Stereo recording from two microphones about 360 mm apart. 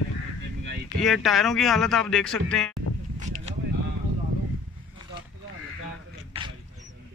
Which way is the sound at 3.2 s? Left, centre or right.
Centre.